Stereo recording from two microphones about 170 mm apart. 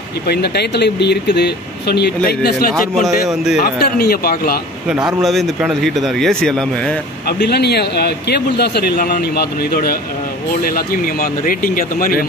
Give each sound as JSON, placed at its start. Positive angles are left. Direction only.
{"t": 0.3, "sound": "a man's voice", "side_deg": 75}
{"t": 5.2, "sound": "speech", "side_deg": 0}
{"t": 7.2, "sound": "a man's voice", "side_deg": 75}